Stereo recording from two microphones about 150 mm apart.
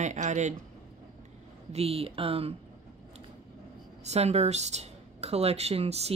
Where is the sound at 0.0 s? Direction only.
55° right (ahead or behind).